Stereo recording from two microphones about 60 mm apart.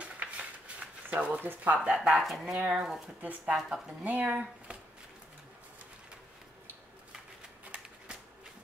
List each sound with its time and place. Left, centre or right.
0.0 s a sound: right
1.4 s speech: right
2.0 s speech: centre; by 3.5 s right
3.5 s speech: centre
4.0 s speech: right